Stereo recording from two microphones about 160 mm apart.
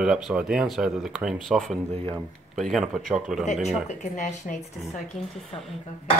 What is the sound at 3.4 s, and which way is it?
A woman's voice, 45° left (ahead or behind).